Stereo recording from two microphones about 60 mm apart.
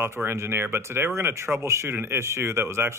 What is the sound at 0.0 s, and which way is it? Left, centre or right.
Speech, right.